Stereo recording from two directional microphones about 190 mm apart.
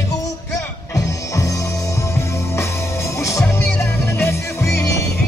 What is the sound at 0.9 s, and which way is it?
Music, 15° left (ahead or behind).